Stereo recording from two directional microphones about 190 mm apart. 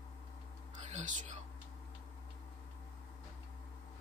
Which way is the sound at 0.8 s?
40° right (ahead or behind).